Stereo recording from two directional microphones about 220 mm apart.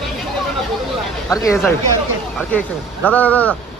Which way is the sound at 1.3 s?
15° left (ahead or behind).